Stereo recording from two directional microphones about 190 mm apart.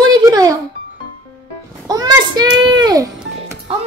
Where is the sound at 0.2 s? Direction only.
20° right (ahead or behind).